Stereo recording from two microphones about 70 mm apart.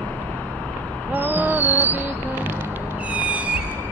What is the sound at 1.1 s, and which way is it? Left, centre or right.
Music, right.